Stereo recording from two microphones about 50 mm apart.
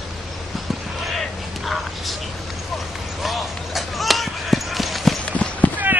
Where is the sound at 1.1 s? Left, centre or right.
Centre.